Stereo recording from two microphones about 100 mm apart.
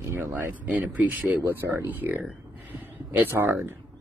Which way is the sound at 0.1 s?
20° right (ahead or behind).